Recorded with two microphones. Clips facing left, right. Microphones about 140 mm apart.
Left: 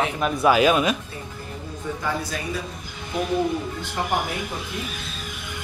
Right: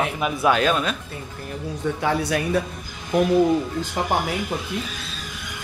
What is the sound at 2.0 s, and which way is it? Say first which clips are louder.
Speech: right 6 dB; 65° right (ahead or behind).